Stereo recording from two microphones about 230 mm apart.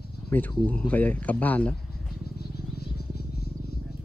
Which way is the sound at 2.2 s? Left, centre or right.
Left.